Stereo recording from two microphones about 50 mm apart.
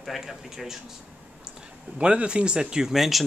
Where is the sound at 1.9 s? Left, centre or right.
Right; by 3.2 s centre.